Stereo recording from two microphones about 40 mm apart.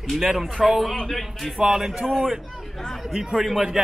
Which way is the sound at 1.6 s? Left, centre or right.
Centre.